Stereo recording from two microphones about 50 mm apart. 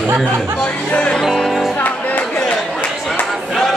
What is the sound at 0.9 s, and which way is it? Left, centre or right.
Music, centre.